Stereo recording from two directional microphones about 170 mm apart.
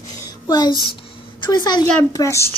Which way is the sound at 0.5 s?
25° left (ahead or behind).